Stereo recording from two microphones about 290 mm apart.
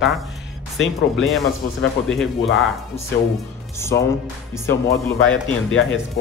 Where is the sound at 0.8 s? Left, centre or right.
Left.